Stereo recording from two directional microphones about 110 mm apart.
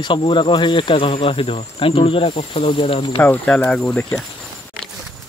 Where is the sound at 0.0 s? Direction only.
50° left (ahead or behind).